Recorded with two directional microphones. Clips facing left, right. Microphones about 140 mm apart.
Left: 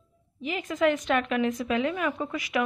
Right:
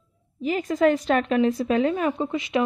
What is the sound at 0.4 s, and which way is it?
A woman's voice, 35° right (ahead or behind).